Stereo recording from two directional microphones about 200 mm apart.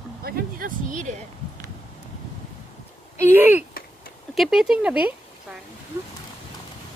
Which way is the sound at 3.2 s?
10° right (ahead or behind).